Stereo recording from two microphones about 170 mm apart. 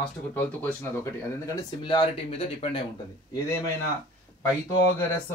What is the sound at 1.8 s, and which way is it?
Speech, 30° left (ahead or behind).